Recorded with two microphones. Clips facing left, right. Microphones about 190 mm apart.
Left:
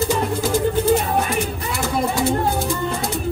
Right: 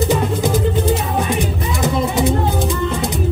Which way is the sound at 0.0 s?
20° right (ahead or behind).